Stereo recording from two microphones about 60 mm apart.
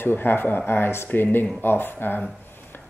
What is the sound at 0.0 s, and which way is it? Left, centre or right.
Speech, left.